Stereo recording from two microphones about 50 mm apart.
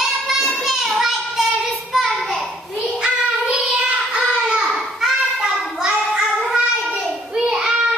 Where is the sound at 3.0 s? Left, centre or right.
Centre.